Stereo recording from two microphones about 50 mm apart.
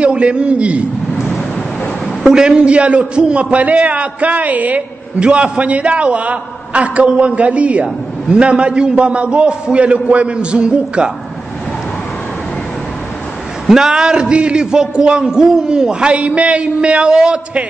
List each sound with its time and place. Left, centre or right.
0.0 s a man's voice: right
2.2 s a man's voice: centre
13.7 s a man's voice: centre